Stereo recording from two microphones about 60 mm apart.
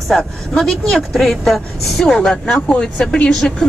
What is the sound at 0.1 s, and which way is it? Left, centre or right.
A woman's voice, centre.